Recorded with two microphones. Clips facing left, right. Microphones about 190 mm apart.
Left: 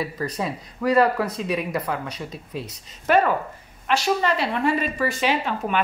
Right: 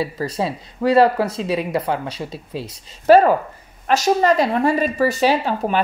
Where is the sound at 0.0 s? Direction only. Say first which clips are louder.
Right 4 dB; 30° right (ahead or behind).